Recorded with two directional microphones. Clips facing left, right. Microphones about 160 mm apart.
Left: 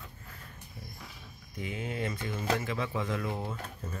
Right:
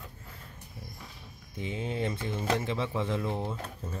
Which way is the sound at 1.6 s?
30° right (ahead or behind).